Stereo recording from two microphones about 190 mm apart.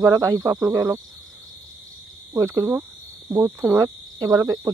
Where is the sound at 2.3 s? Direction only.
15° right (ahead or behind).